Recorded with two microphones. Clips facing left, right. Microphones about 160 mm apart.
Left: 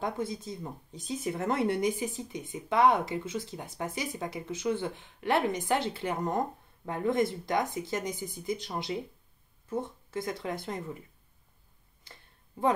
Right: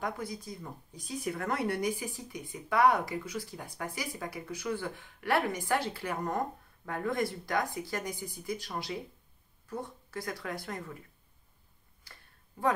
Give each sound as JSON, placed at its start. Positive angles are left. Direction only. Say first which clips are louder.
{"t": 0.0, "sound": "speech", "louder": "left 4 dB", "side_deg": 25}
{"t": 12.0, "sound": "tick", "louder": "left 3 dB", "side_deg": 20}